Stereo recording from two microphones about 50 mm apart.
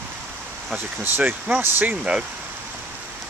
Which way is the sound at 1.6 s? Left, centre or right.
Right.